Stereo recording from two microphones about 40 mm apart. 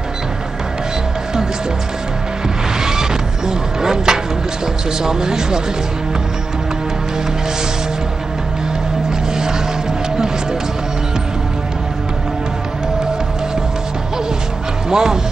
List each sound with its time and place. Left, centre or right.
2.8 s vehicle: centre
5.0 s speech: centre
14.9 s speech: centre